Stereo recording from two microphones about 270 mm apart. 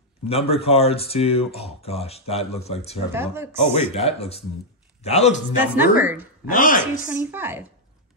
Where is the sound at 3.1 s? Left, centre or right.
Centre.